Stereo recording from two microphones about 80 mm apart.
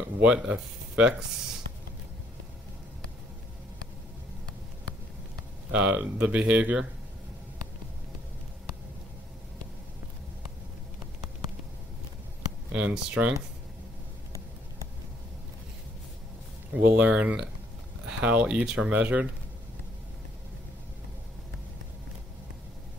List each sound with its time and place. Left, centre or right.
0.2 s speech: centre
5.7 s speech: centre
12.7 s speech: centre
16.7 s speech: centre